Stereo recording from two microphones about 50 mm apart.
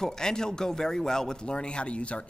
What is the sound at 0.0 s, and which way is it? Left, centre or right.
Speech, centre.